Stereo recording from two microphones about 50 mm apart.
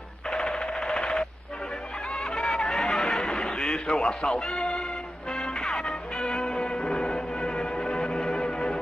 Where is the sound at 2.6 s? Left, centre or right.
Centre.